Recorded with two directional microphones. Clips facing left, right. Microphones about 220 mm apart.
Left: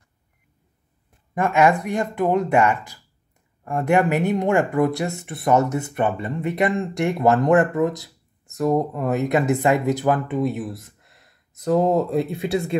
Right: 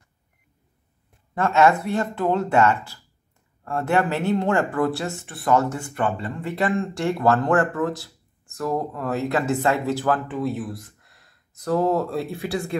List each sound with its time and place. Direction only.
1.3 s speech: 15° left (ahead or behind)